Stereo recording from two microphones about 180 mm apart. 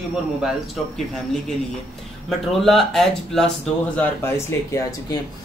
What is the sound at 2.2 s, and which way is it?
Speech, centre (ahead or behind).